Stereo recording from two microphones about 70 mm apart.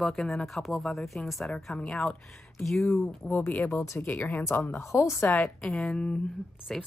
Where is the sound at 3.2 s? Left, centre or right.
Left.